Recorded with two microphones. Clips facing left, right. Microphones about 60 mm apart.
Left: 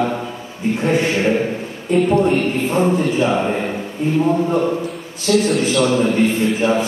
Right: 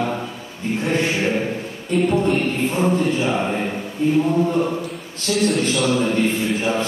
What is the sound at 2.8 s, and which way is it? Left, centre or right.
A man's voice, centre.